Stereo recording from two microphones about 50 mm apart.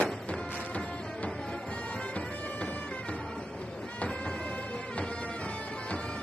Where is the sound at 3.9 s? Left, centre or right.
Left.